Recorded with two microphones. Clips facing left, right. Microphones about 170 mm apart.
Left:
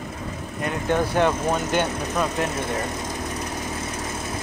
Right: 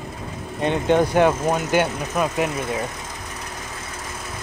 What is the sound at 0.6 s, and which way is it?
Speech, 25° right (ahead or behind).